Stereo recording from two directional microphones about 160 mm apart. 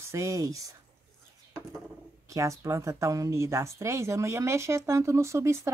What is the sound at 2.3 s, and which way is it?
Speech, 20° right (ahead or behind).